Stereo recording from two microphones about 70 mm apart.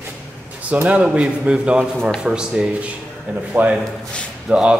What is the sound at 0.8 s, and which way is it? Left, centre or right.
A man's voice, centre.